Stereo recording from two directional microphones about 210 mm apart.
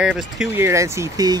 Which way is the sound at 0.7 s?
15° right (ahead or behind).